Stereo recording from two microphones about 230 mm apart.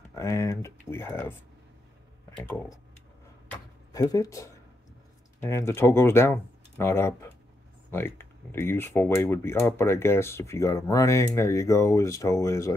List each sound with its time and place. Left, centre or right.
0.1 s speech: centre
2.3 s speech: centre
3.9 s speech: centre